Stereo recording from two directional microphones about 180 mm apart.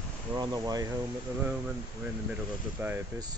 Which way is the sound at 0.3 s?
20° right (ahead or behind).